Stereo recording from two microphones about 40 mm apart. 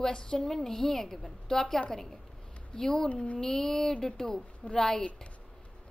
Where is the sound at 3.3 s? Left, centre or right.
Centre.